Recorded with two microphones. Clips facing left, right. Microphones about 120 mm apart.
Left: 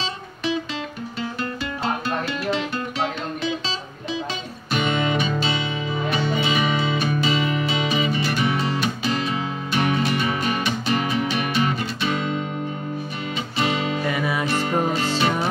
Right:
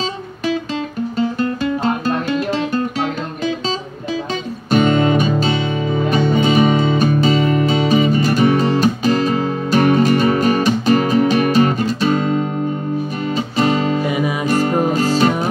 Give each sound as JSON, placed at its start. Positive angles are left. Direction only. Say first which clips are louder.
{"t": 1.1, "sound": "music", "louder": "right 10 dB", "side_deg": -45}
{"t": 4.6, "sound": "music", "louder": "right 9 dB", "side_deg": -45}
{"t": 14.0, "sound": "music", "louder": "right 5 dB", "side_deg": -15}
{"t": 14.4, "sound": "music", "louder": "right 8 dB", "side_deg": -40}